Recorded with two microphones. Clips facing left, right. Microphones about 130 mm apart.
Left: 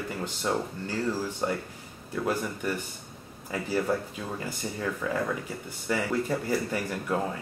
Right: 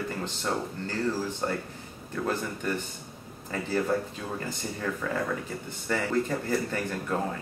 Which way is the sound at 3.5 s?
10° left (ahead or behind).